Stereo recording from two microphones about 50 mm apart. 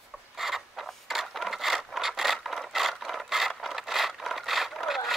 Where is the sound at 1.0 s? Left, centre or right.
Centre.